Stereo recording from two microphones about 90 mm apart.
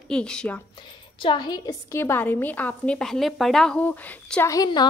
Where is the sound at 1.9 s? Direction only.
25° left (ahead or behind); by 3.7 s 5° left (ahead or behind).